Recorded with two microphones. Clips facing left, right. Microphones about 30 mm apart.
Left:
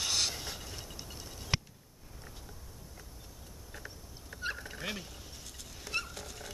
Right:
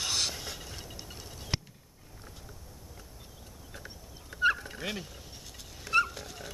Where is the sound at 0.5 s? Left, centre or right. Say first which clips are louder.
Right 1 dB; centre.